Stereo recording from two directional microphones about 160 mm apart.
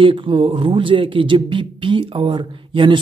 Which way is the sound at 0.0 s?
30° right (ahead or behind).